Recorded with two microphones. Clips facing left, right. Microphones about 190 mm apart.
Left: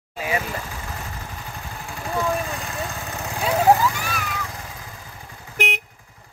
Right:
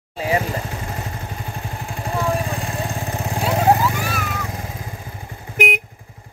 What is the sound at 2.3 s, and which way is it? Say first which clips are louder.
Vehicle: right 3 dB; 30° right (ahead or behind).